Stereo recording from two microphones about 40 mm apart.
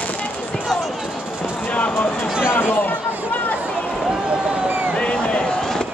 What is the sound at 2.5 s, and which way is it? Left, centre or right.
Chatter, left.